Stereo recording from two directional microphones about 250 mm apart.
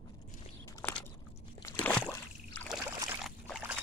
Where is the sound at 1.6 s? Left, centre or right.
Centre.